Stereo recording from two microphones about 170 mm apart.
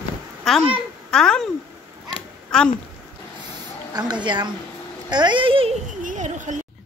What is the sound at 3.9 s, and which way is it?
A woman's voice, 25° right (ahead or behind).